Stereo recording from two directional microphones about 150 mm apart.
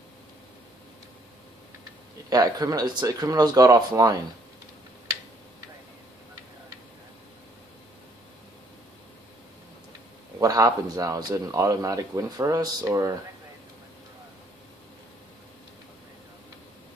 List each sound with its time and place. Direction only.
2.2 s speech: 25° right (ahead or behind)
10.4 s speech: 20° right (ahead or behind)